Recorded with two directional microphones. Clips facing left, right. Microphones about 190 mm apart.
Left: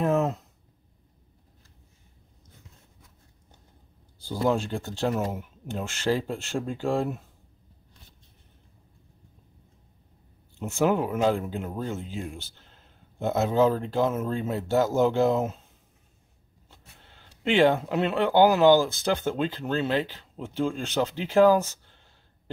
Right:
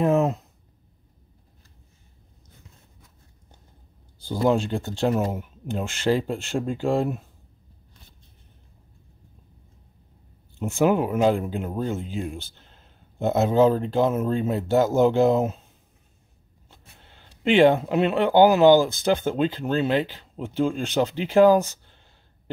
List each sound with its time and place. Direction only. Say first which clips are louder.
0.0 s a sound: right 4 dB; 15° right (ahead or behind)
4.3 s speech: right 4 dB; 20° right (ahead or behind)
10.6 s speech: right 3 dB; 15° right (ahead or behind)
17.5 s speech: right 4 dB; 20° right (ahead or behind)